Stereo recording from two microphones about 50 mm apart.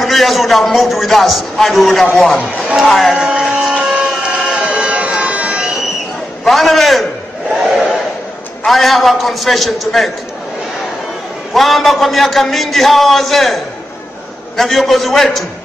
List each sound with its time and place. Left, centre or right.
0.0 s a man's voice: centre
3.2 s speech: centre
4.0 s a sound: centre
4.6 s music: right
6.4 s a man's voice: centre
7.5 s battle cry: centre
8.6 s a man's voice: centre
11.5 s a man's voice: centre
14.6 s a man's voice: centre